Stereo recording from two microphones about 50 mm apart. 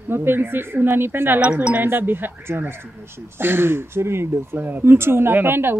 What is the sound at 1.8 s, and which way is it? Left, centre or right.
Speech, right.